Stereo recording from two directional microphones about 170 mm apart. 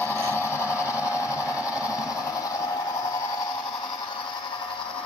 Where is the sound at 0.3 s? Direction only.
15° left (ahead or behind).